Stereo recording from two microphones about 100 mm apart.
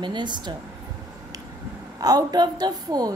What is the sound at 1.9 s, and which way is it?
A woman's voice, 40° right (ahead or behind).